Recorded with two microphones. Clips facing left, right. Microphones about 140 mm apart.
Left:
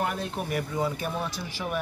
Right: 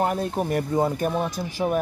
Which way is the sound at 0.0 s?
40° right (ahead or behind).